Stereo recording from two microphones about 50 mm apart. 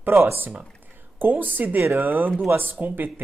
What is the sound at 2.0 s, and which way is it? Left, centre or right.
Speech, right.